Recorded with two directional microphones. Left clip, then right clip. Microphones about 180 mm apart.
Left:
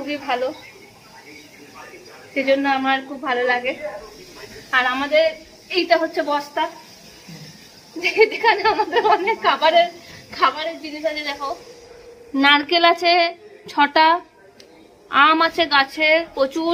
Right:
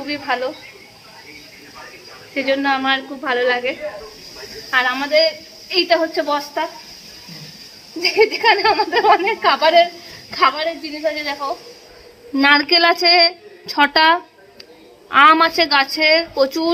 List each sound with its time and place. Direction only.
0.0 s speech: 5° left (ahead or behind)
2.3 s a woman's voice: 5° left (ahead or behind); by 6.4 s 10° right (ahead or behind)
8.0 s a woman's voice: 30° right (ahead or behind)
12.4 s speech: 20° right (ahead or behind)